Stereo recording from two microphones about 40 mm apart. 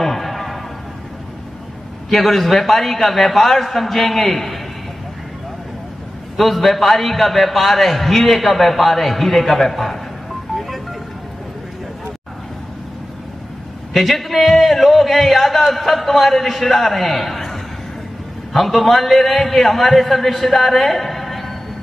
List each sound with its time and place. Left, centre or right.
0.0 s a sound: centre
2.0 s a man's voice: centre
6.3 s a man's voice: centre
10.5 s music: centre
13.9 s a man's voice: centre